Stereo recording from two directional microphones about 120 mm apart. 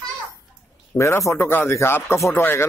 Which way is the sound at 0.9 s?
25° left (ahead or behind).